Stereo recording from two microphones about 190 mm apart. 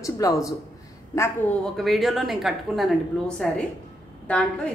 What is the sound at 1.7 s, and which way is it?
A woman's voice, centre (ahead or behind).